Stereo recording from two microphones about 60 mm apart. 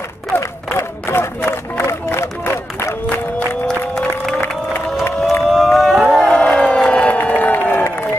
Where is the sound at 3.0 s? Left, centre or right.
Left.